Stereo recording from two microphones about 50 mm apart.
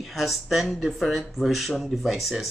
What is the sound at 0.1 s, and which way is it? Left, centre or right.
Speech, centre.